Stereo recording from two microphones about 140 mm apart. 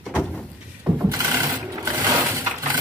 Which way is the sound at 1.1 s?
20° right (ahead or behind).